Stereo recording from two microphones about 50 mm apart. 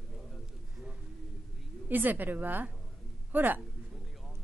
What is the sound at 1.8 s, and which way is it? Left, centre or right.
A man's voice, right.